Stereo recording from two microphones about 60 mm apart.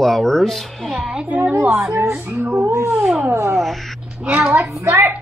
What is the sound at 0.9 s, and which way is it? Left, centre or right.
Speech, centre.